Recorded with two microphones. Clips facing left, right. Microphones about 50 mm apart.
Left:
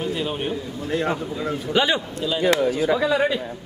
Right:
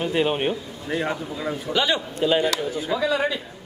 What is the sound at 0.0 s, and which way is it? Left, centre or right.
Speech, right.